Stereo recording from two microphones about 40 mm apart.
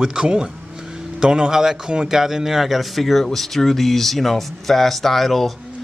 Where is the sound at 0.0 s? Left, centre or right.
Centre.